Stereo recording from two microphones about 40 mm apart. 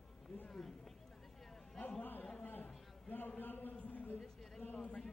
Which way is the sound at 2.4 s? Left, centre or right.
Left.